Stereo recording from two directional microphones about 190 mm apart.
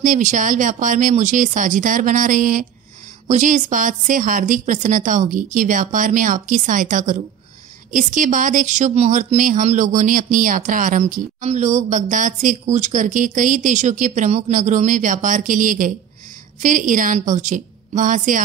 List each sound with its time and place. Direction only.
0.0 s a woman's voice: 40° right (ahead or behind)